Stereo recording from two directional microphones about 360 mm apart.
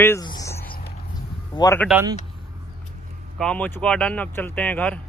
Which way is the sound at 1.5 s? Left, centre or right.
Centre.